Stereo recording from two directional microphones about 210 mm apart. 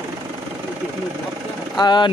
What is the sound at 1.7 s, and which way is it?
Speech, 20° left (ahead or behind).